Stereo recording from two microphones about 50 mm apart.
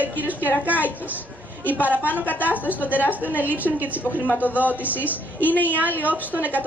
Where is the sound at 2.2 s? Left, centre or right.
Left.